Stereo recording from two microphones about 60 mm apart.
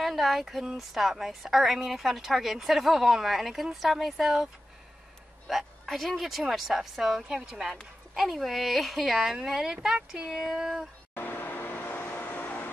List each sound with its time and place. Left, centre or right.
0.0 s a woman's voice: centre
5.5 s a woman's voice: centre
11.1 s vehicle: left